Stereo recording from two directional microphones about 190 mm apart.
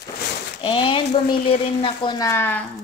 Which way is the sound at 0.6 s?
25° left (ahead or behind).